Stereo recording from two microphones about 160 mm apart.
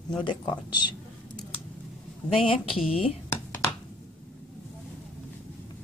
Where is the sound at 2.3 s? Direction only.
35° left (ahead or behind).